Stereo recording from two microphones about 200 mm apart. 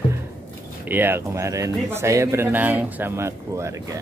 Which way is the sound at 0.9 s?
10° right (ahead or behind).